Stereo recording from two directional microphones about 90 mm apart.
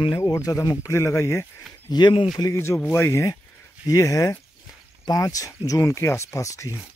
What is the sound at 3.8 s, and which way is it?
Speech, 35° left (ahead or behind).